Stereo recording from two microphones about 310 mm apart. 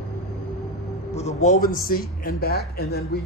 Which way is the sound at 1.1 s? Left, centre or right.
Left.